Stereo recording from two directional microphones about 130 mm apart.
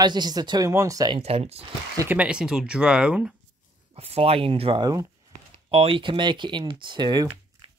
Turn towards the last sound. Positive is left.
turn(degrees=-35)  # may be behind; listen again after turning